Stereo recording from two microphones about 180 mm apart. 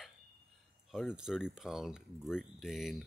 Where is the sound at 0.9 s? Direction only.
5° right (ahead or behind).